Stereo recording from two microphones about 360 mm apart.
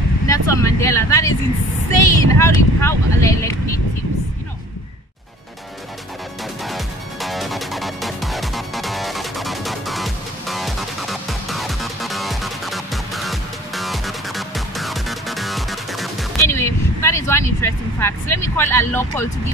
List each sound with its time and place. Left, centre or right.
0.3 s vehicle: centre
2.0 s speech: centre
6.6 s music: centre